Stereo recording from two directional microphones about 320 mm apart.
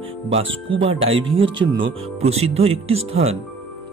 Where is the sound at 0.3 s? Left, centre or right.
Centre.